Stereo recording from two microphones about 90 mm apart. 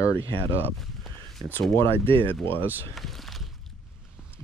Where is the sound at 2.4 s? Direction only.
25° left (ahead or behind).